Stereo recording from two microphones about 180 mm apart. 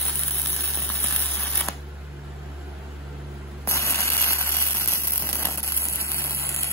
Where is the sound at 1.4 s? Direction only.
10° left (ahead or behind).